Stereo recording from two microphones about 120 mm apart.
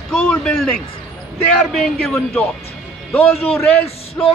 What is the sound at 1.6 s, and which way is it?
Speech, centre (ahead or behind).